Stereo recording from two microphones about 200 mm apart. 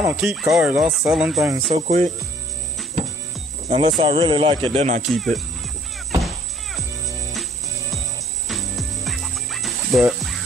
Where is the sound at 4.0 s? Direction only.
25° right (ahead or behind).